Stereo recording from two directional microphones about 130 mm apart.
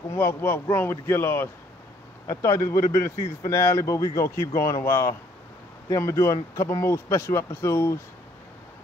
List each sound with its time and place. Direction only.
0.1 s a man's voice: 20° left (ahead or behind)